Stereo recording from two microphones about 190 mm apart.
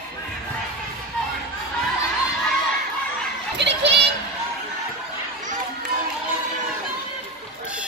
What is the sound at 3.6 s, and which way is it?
Children playing, 65° right (ahead or behind).